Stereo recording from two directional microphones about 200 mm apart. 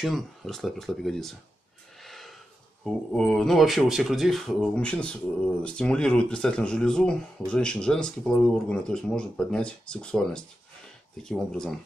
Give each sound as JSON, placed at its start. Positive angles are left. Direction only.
{"t": 0.0, "sound": "speech", "side_deg": 0}